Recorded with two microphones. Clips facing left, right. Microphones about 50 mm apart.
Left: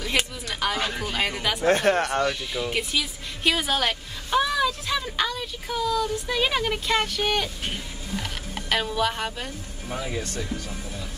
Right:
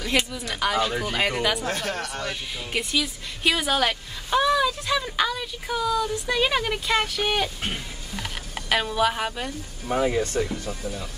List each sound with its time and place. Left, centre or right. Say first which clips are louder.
0.1 s speech: right 2 dB; centre
1.7 s speech: left 8 dB; left
2.7 s speech: right 1 dB; centre
9.8 s speech: right 8 dB; right